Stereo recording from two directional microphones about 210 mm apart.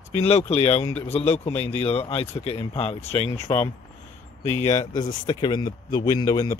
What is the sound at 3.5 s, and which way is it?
Speech, 10° left (ahead or behind).